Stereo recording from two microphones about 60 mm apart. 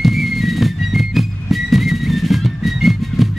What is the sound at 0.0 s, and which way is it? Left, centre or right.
Music, centre.